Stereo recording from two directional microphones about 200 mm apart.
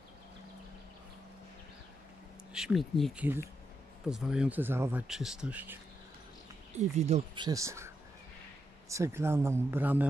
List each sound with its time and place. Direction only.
2.5 s speech: centre (ahead or behind)
7.0 s speech: 35° right (ahead or behind)
7.4 s speech: 15° right (ahead or behind)